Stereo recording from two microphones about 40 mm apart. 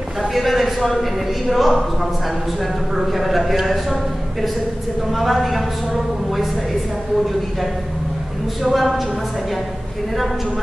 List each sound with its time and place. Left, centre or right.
0.3 s a man's voice: centre
3.0 s a man's voice: centre
5.1 s a man's voice: centre
8.6 s a man's voice: centre